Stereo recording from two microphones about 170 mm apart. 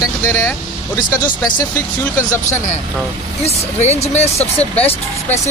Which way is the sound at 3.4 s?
40° left (ahead or behind).